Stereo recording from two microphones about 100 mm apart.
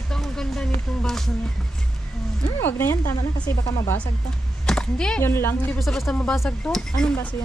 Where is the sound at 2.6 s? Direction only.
25° left (ahead or behind).